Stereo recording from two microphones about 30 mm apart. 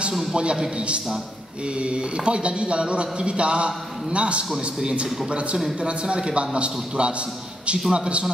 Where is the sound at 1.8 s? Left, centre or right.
Right.